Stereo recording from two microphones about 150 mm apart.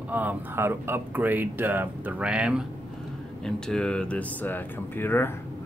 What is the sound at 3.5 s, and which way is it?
Speech, 5° left (ahead or behind).